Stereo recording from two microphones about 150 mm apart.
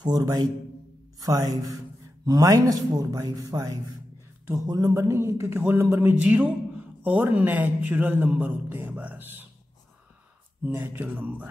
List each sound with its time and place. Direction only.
0.0 s a man's voice: 25° right (ahead or behind)
10.6 s speech: 15° right (ahead or behind)